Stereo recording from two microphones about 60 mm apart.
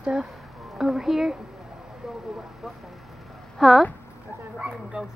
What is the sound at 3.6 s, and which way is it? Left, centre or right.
Speech, centre.